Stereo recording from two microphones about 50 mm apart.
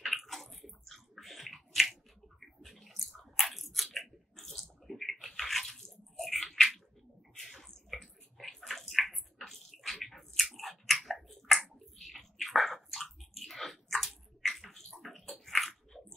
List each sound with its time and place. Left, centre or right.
0.0 s a sound: centre
10.0 s chewing: centre
14.9 s bathtub: centre